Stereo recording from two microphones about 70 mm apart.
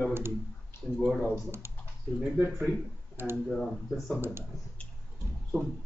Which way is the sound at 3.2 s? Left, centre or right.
Right.